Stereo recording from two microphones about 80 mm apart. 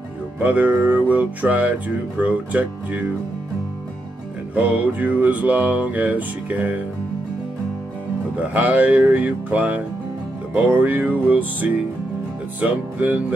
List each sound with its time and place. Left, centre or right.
0.4 s music: centre
4.6 s music: centre
8.4 s music: centre